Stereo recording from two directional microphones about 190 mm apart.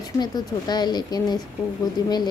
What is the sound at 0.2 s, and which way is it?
Speech, 20° left (ahead or behind).